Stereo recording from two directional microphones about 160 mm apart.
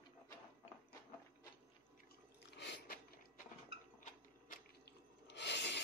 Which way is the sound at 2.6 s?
90° left.